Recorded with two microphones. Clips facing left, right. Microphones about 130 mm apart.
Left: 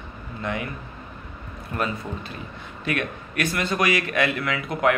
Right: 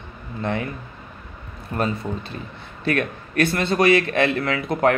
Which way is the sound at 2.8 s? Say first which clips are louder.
Right 4 dB; 35° right (ahead or behind).